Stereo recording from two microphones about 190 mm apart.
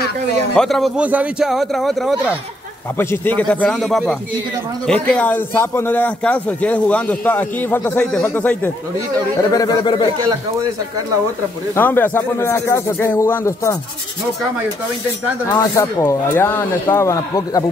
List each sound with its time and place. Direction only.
0.6 s a man's voice: centre (ahead or behind)
3.0 s a man's voice: 10° left (ahead or behind)
9.4 s speech: 20° left (ahead or behind)
11.7 s a man's voice: 10° left (ahead or behind)
15.4 s a man's voice: 15° left (ahead or behind)